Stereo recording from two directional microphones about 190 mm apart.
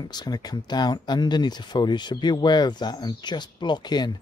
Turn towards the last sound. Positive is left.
turn(degrees=20)  # may be behind; listen again after turning